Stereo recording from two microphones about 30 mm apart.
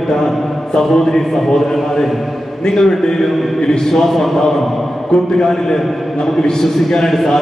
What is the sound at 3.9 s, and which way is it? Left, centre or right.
Speech, centre.